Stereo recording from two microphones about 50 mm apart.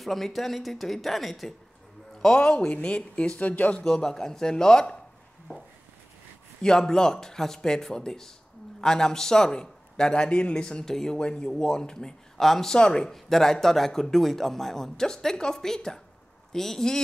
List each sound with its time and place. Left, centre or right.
0.0 s speech: centre
2.3 s speech: centre
3.7 s a man's voice: centre
6.6 s a man's voice: centre